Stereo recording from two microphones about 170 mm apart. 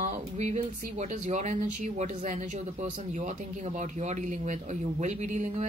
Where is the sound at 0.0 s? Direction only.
45° right (ahead or behind).